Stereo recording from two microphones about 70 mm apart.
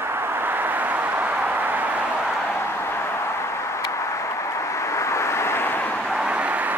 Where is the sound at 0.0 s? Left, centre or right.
Right.